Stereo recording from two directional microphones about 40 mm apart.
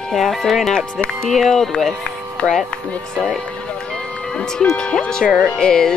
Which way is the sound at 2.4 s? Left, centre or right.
Left.